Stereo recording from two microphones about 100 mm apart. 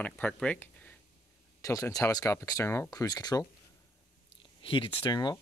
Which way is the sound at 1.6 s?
30° left (ahead or behind).